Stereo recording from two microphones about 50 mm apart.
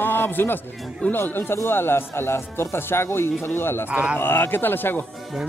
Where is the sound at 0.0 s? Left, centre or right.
Left.